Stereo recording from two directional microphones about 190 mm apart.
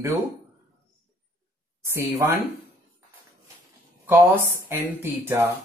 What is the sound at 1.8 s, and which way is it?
Speech, 15° right (ahead or behind).